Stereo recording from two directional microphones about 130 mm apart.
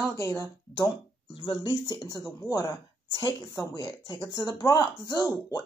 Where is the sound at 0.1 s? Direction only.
25° left (ahead or behind).